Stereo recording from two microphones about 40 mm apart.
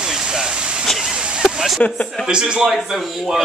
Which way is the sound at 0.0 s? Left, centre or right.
Centre.